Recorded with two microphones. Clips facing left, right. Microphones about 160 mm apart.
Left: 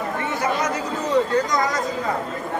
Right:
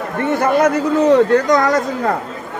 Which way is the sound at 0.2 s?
55° right (ahead or behind).